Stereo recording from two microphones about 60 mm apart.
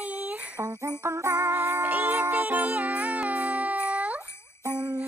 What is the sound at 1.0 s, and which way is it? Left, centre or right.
Jingle bell, right.